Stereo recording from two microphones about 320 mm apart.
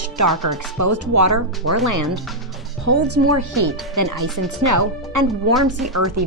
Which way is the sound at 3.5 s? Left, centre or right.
Right.